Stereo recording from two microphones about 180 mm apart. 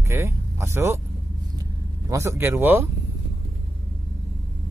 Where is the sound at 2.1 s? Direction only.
15° right (ahead or behind).